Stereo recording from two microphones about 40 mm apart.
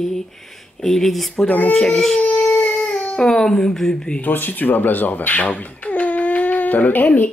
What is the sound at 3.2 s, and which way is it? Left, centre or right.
Speech, centre.